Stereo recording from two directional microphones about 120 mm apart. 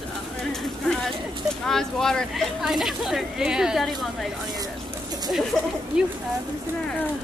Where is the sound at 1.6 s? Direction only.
5° left (ahead or behind).